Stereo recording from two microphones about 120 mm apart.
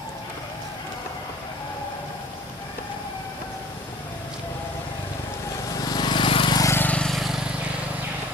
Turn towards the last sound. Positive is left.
turn(degrees=0)  # may be behind; listen again after turning